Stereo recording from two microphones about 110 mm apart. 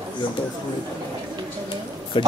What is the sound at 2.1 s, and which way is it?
Speech, 50° left (ahead or behind).